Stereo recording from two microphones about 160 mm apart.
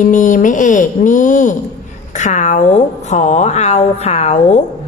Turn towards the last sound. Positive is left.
turn(degrees=45)  # may be behind; listen again after turning